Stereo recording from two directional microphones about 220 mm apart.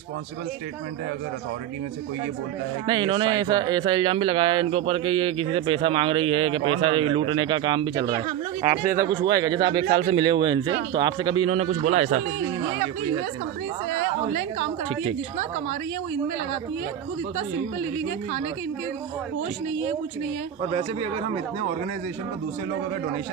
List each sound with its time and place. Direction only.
2.9 s speech: 20° right (ahead or behind)
9.8 s speech: 30° right (ahead or behind)
20.7 s speech: 25° right (ahead or behind)